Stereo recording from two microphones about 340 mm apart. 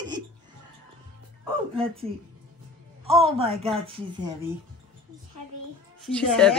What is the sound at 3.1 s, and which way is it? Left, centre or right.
A woman's voice, centre.